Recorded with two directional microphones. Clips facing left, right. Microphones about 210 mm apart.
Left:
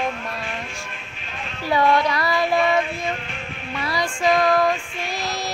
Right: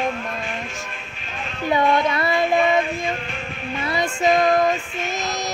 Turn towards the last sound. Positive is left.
turn(degrees=-20)  # may be behind; listen again after turning